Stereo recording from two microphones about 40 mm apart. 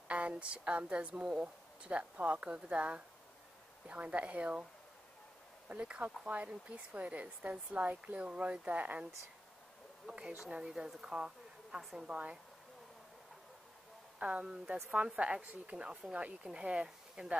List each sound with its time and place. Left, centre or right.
0.1 s a woman's voice: right
5.7 s a woman's voice: right
10.5 s speech: centre
11.0 s a sound: centre
11.8 s a woman's voice: centre
12.1 s speech: right
14.2 s a woman's voice: right